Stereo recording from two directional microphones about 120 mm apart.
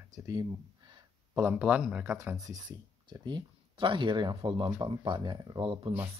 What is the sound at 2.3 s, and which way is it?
Speech, 30° right (ahead or behind).